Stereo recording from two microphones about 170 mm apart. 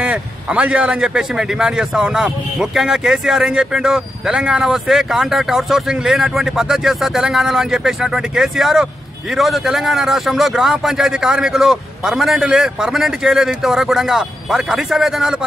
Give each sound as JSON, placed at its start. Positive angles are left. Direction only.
{"t": 0.0, "sound": "a man's voice", "side_deg": -5}